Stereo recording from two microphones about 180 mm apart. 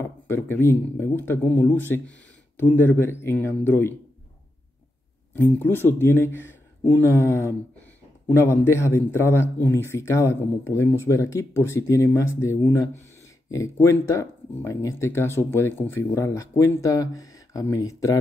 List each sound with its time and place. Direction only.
0.0 s speech: 15° left (ahead or behind)
5.3 s speech: 10° left (ahead or behind)